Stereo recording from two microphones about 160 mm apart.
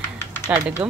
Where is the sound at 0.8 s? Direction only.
10° right (ahead or behind).